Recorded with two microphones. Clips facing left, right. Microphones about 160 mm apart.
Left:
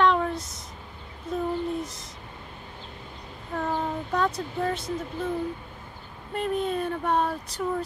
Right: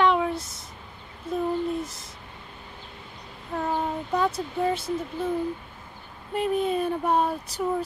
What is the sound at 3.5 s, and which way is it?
Speech, 10° right (ahead or behind).